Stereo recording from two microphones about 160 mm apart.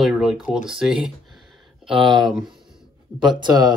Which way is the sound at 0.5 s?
5° right (ahead or behind).